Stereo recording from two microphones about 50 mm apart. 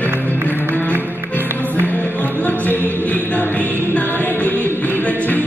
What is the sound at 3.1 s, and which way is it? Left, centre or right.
Chant, left.